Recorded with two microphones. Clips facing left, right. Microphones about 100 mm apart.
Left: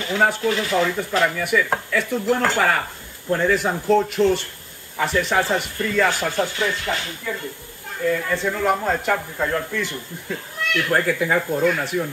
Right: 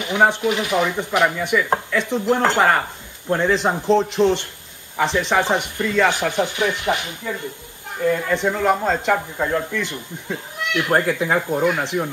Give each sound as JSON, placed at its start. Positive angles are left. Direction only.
{"t": 0.0, "sound": "speech", "side_deg": -20}
{"t": 8.3, "sound": "speech", "side_deg": -20}